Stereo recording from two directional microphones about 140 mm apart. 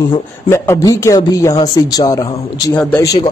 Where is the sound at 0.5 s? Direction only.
20° left (ahead or behind).